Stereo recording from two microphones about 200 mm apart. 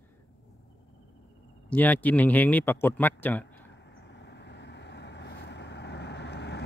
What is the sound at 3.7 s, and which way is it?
Vehicle, 60° left (ahead or behind).